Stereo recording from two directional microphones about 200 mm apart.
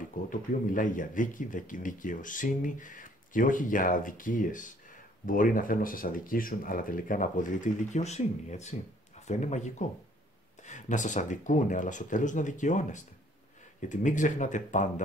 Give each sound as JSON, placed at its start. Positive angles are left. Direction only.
{"t": 0.3, "sound": "speech", "side_deg": 40}